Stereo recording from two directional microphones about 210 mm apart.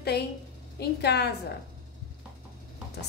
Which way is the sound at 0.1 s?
50° left (ahead or behind).